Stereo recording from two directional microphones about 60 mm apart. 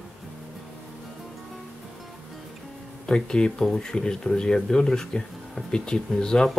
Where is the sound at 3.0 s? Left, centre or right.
Centre.